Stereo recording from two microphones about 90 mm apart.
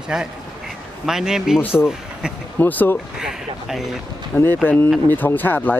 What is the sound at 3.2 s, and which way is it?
Speech, 5° right (ahead or behind).